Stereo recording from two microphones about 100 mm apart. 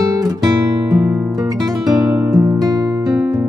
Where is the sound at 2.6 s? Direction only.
40° right (ahead or behind).